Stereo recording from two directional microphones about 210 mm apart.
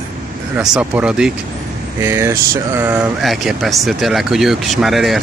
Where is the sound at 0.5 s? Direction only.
5° right (ahead or behind).